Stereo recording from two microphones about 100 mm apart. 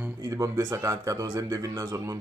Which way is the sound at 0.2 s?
35° right (ahead or behind).